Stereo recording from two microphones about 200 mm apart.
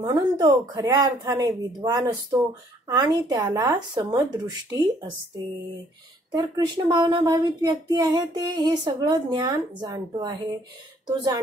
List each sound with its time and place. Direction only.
0.0 s speech: 20° right (ahead or behind)
6.3 s speech: 20° right (ahead or behind)